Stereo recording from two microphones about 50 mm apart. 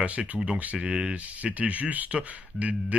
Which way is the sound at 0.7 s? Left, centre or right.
Centre.